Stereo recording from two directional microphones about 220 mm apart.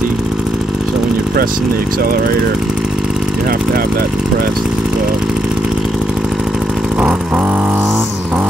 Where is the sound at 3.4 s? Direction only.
40° right (ahead or behind).